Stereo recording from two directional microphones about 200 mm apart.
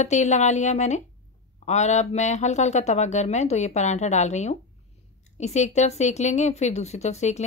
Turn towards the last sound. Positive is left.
turn(degrees=35)  # may be behind; listen again after turning